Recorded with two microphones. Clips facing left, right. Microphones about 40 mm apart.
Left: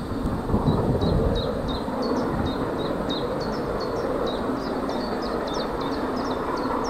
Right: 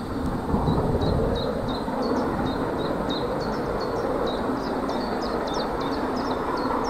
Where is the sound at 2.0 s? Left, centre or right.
Right.